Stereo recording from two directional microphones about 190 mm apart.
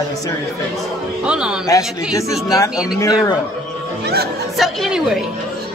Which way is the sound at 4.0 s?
60° right (ahead or behind).